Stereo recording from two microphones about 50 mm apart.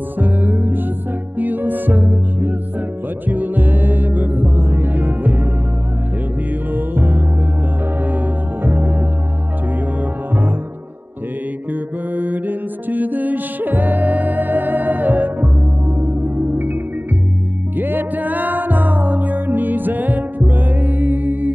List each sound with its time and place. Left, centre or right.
0.2 s music: right
6.7 s music: right
8.6 s music: right
11.7 s mantra: right
16.0 s music: right